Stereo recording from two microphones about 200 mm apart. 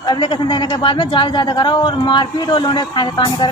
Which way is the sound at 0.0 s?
25° left (ahead or behind).